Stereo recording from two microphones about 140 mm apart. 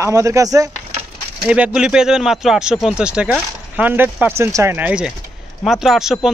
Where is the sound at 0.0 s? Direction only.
20° right (ahead or behind).